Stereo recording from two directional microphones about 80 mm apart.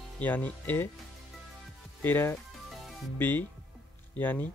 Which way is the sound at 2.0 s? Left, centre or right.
Left.